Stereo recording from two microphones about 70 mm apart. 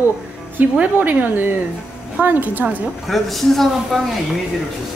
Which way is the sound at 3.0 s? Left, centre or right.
Centre.